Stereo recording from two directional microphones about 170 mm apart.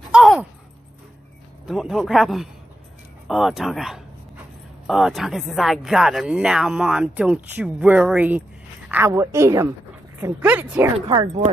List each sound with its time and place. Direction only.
0.1 s sigh: 5° right (ahead or behind)
1.7 s speech: centre (ahead or behind)
11.0 s speech: 25° right (ahead or behind)